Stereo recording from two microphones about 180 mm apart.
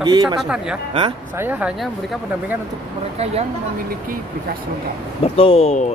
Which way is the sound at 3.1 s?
35° right (ahead or behind).